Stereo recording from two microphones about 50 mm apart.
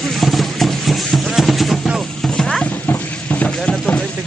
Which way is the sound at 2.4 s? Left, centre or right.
Centre.